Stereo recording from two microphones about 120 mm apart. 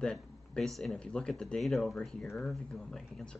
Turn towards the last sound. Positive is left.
turn(degrees=5)  # may be behind; listen again after turning